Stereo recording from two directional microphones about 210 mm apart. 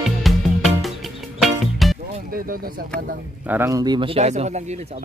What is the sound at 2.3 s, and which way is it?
Speech, 45° right (ahead or behind).